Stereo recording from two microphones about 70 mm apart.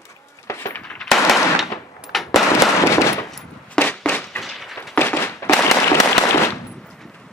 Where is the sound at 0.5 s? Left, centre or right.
Left.